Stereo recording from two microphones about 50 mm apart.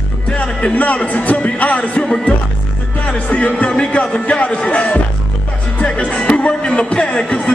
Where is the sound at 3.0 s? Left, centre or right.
Left.